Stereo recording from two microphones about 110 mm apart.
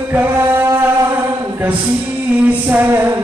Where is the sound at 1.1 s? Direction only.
20° right (ahead or behind).